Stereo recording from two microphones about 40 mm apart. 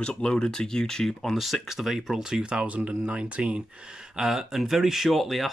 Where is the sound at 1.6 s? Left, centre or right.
Centre.